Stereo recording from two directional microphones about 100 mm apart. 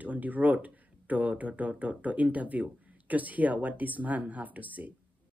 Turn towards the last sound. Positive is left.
turn(degrees=-15)  # may be behind; listen again after turning